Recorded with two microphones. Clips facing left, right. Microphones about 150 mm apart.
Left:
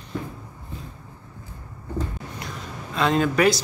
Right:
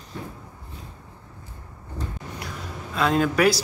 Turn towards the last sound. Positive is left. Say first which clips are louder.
# even
turn(degrees=-5)  # may be behind; listen again after turning